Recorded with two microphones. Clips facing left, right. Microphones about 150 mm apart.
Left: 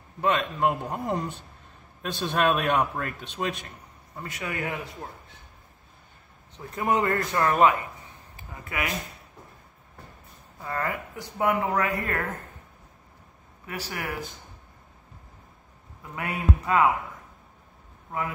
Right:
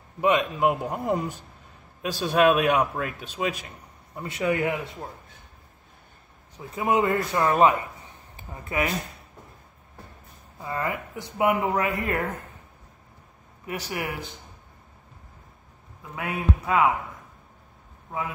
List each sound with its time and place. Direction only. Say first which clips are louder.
0.2 s a man's voice: right 3 dB; 15° right (ahead or behind)
4.2 s speech: right 8 dB; 25° right (ahead or behind)
6.5 s a man's voice: right 2 dB; 10° right (ahead or behind)
8.6 s speech: right 5 dB; 30° right (ahead or behind)
10.6 s speech: right 1 dB; 15° right (ahead or behind)
13.7 s speech: right 3 dB; 20° right (ahead or behind)
16.2 s a man's voice: right 1 dB; 10° right (ahead or behind)